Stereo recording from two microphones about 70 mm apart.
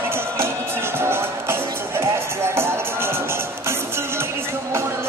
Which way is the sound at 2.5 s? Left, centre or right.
Right.